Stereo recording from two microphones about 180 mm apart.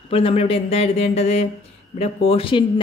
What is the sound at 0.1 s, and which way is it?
Speech, 30° left (ahead or behind).